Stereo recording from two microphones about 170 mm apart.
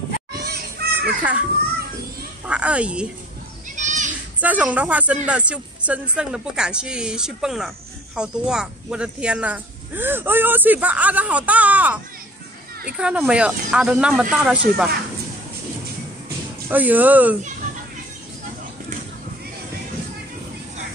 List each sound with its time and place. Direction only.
0.3 s children playing: 70° right (ahead or behind)
2.4 s speech: 5° right (ahead or behind)
3.7 s children playing: 45° right (ahead or behind)
4.4 s a woman's voice: 10° right (ahead or behind)
16.6 s speech: 10° right (ahead or behind)